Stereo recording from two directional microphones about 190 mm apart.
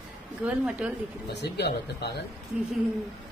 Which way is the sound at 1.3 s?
60° left (ahead or behind).